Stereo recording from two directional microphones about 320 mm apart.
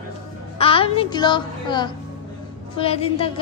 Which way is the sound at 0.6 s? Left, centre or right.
Centre.